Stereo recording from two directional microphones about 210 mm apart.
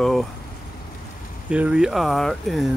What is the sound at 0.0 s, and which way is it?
Speech, centre (ahead or behind).